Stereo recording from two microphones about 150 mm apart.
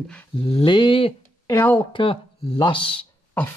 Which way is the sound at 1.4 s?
15° left (ahead or behind).